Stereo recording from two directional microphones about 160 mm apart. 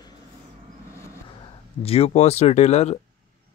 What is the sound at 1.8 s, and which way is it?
Speech, 40° left (ahead or behind).